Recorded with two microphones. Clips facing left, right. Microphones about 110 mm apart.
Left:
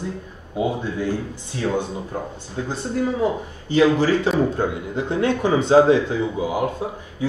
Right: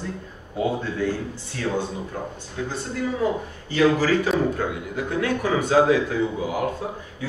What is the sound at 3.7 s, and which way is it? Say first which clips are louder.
A man's voice: left 3 dB; 20° left (ahead or behind).